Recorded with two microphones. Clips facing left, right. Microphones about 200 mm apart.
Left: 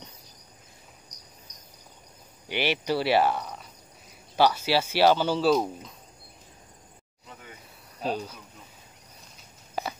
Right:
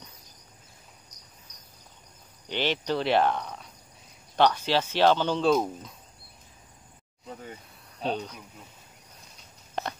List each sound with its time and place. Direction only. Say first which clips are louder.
1.1 s cricket: left 3 dB; 55° right (ahead or behind)
2.4 s speech: left 1 dB; 10° left (ahead or behind)
8.0 s speech: even; 5° left (ahead or behind)
9.8 s a sound: left 1 dB; 5° left (ahead or behind)